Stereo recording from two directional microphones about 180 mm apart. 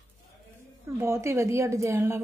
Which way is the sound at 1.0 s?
15° right (ahead or behind).